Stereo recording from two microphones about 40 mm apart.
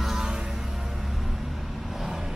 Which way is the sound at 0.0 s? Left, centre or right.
Centre.